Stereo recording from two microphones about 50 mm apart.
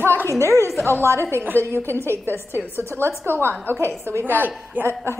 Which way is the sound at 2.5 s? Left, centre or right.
Right.